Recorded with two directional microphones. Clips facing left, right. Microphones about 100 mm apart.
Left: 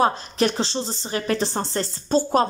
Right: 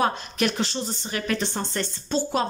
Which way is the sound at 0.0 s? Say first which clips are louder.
Left 4 dB; 30° left (ahead or behind).